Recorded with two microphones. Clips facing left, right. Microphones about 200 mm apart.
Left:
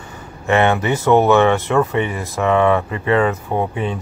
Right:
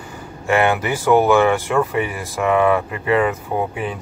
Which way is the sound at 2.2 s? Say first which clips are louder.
Left 1 dB; 5° right (ahead or behind).